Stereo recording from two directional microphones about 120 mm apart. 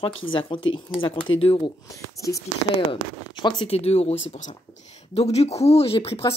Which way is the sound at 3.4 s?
40° left (ahead or behind).